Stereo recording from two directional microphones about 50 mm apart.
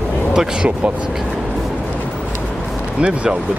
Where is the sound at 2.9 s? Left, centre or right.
Centre.